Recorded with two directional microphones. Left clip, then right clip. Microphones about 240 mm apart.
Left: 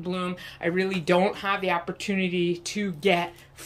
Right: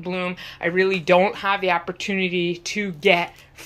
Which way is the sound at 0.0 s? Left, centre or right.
Centre.